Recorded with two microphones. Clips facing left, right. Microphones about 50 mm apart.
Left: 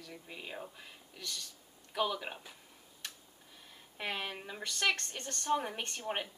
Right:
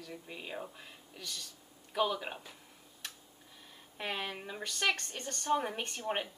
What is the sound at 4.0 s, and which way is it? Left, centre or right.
A woman's voice, centre.